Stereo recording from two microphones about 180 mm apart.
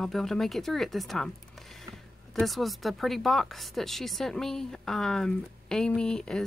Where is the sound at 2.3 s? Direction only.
Centre (ahead or behind).